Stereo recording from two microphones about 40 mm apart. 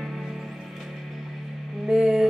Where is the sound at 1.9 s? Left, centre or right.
Centre.